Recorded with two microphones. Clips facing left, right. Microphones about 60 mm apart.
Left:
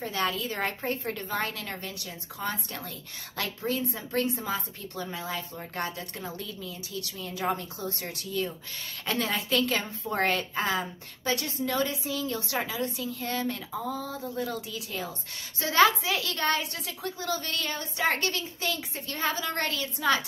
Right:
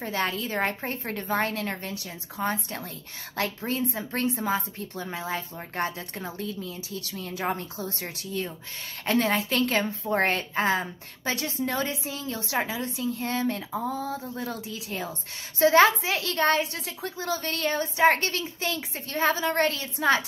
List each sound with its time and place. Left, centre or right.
0.0 s a woman's voice: right
7.3 s a woman's voice: right
12.5 s a woman's voice: right